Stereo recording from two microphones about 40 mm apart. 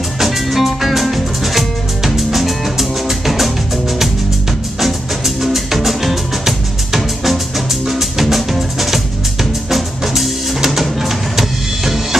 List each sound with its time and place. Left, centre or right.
0.2 s music: centre
4.7 s music: centre